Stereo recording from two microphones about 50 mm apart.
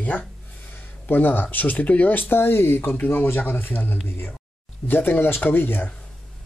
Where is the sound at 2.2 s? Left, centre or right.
Left.